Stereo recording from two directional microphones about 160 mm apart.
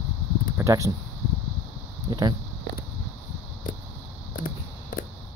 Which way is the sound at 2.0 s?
25° right (ahead or behind).